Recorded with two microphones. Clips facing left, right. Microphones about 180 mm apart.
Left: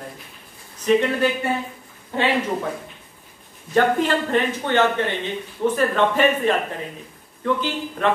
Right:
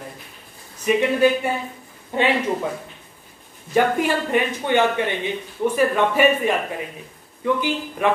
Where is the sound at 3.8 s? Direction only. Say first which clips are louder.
Even; 10° right (ahead or behind).